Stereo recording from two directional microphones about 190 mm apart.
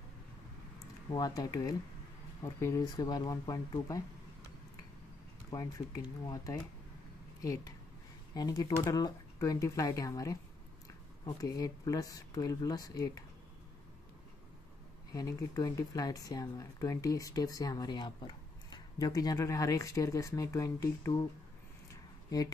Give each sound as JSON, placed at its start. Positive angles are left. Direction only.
{"t": 1.1, "sound": "speech", "side_deg": 20}
{"t": 6.2, "sound": "speech", "side_deg": 20}
{"t": 15.1, "sound": "speech", "side_deg": 20}